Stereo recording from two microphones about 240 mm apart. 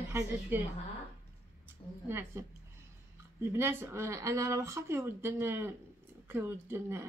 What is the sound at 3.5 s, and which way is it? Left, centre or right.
Speech, centre.